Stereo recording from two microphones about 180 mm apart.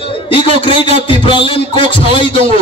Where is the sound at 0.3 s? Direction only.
30° left (ahead or behind).